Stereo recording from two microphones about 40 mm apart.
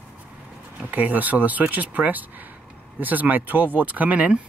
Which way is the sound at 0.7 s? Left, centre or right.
Right.